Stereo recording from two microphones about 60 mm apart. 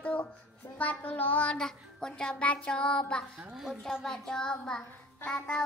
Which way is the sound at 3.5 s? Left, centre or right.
Centre.